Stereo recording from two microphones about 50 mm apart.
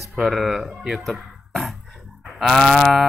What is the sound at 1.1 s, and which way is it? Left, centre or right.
Speech, centre.